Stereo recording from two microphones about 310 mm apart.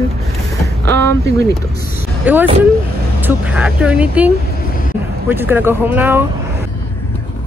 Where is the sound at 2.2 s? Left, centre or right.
Centre.